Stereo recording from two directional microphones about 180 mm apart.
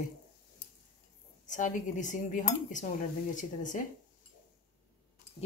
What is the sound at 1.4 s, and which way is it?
Cutlery, 45° left (ahead or behind).